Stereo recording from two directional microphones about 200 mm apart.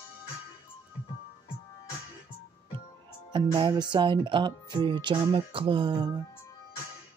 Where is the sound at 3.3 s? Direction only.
25° right (ahead or behind).